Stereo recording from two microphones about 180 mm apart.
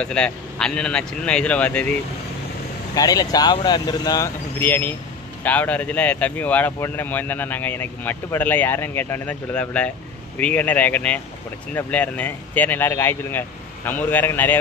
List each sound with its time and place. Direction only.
0.0 s speech: 5° left (ahead or behind)
2.9 s speech: 20° left (ahead or behind)